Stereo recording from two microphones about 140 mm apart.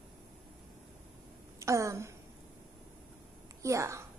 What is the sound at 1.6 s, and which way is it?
Speech, 20° right (ahead or behind).